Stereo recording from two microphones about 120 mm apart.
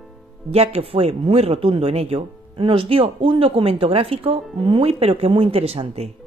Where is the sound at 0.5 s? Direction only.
60° right (ahead or behind).